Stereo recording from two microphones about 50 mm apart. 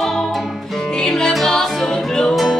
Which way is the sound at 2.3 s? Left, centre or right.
Centre.